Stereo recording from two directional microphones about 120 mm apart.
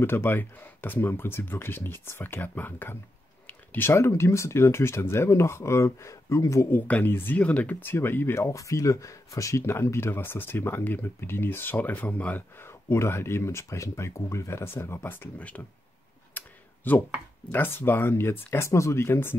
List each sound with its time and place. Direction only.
0.0 s speech: 20° left (ahead or behind)
16.3 s clicking: 15° left (ahead or behind)
17.5 s speech: 20° left (ahead or behind)